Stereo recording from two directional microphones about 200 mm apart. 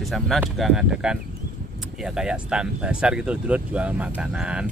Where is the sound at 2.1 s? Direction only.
5° right (ahead or behind).